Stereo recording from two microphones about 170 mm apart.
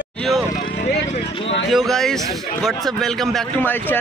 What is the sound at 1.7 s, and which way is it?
A man's voice, centre (ahead or behind).